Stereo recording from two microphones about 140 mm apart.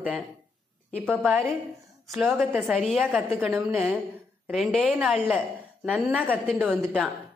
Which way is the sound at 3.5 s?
15° right (ahead or behind).